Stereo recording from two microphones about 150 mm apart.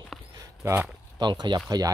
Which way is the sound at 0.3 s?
25° right (ahead or behind).